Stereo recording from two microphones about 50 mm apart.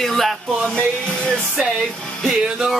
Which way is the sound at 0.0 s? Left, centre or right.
Centre.